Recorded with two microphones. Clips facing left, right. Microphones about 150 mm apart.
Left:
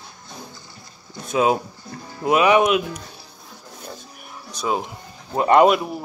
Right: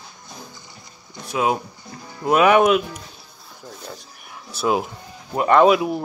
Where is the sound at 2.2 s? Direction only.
5° left (ahead or behind).